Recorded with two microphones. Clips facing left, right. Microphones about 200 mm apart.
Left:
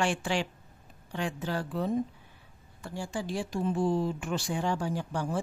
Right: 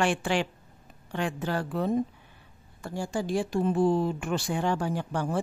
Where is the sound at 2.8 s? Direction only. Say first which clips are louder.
Right 4 dB; 45° right (ahead or behind).